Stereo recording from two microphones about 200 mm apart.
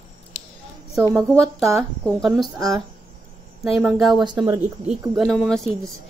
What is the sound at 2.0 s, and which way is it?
Speech, 5° left (ahead or behind).